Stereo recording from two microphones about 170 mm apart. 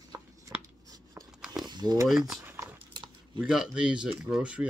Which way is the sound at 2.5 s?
20° right (ahead or behind).